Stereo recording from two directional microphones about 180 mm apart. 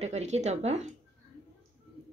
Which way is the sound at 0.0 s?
40° right (ahead or behind).